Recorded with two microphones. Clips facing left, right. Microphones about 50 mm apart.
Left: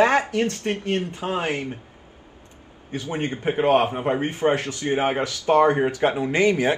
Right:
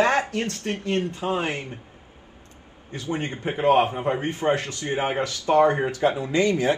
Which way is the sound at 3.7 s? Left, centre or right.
Left.